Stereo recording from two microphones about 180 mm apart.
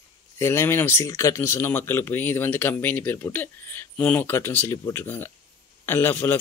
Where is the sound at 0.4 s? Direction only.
15° left (ahead or behind).